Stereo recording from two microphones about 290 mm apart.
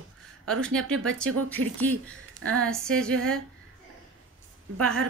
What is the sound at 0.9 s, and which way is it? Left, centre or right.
A woman's voice, right.